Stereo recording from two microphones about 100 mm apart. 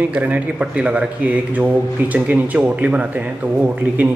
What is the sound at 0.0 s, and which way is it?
A man's voice, 15° right (ahead or behind).